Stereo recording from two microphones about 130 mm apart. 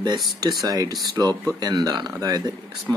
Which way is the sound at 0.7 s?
30° right (ahead or behind).